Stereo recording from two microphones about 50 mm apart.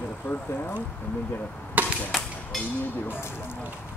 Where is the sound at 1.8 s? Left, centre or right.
Right.